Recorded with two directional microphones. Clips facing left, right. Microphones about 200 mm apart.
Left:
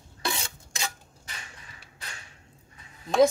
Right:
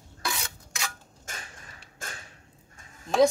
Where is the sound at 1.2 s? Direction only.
45° right (ahead or behind).